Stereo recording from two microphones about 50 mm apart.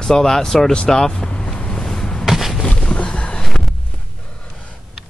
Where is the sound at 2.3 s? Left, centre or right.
Centre.